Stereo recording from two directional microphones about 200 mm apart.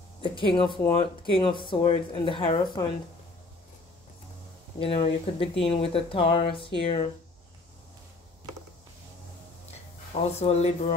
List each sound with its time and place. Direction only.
0.2 s speech: 25° left (ahead or behind)
4.7 s speech: 25° left (ahead or behind)
10.4 s speech: 35° left (ahead or behind)